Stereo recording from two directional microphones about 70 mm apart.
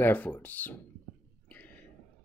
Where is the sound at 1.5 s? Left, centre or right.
Left.